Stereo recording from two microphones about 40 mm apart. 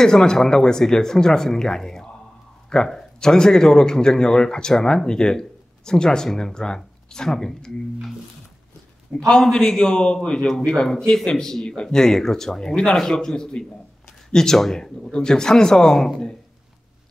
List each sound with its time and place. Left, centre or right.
0.0 s speech: centre
9.4 s a man's voice: centre